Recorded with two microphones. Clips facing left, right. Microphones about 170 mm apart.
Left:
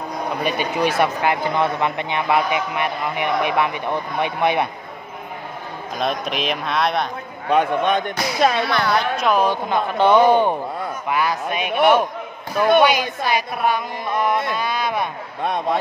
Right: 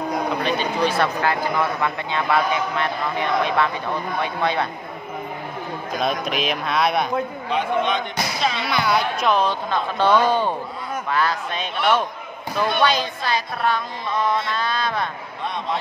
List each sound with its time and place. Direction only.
0.4 s speech: 10° left (ahead or behind)
5.9 s speech: centre (ahead or behind)
7.4 s speech: 55° left (ahead or behind)
8.6 s a woman's voice: 10° right (ahead or behind)
9.2 s speech: 10° left (ahead or behind)
11.7 s speech: 50° left (ahead or behind)
12.8 s speech: 15° left (ahead or behind)
15.4 s speech: 50° left (ahead or behind)